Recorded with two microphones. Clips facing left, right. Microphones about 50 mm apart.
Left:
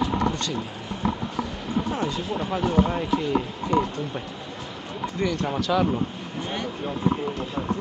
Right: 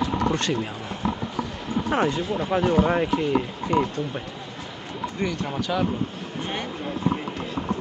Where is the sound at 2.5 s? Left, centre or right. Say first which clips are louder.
Right 3 dB; right.